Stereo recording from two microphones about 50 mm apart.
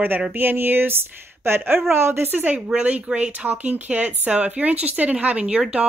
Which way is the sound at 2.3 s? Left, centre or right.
Right.